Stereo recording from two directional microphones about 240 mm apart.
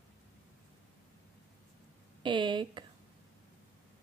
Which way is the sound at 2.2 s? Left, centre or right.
Centre.